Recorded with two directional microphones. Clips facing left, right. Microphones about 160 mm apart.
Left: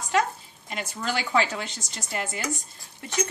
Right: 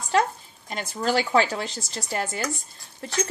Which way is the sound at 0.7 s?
35° right (ahead or behind).